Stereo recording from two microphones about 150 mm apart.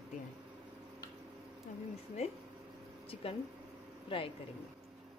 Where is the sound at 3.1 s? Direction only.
40° left (ahead or behind).